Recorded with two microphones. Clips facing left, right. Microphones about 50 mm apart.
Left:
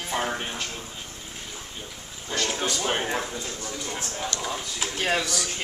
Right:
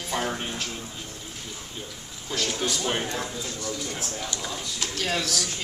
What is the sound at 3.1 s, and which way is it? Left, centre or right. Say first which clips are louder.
Speech: left 1 dB; left.